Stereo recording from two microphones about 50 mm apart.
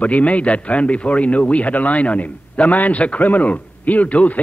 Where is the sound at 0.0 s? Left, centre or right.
Left.